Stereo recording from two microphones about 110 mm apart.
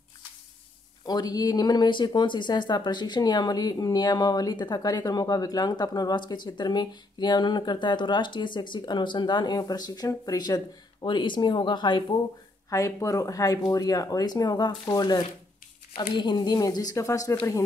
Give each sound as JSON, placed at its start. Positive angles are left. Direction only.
{"t": 1.0, "sound": "speech", "side_deg": 35}
{"t": 12.6, "sound": "speech", "side_deg": 30}